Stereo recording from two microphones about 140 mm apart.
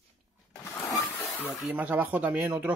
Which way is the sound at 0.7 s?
25° left (ahead or behind).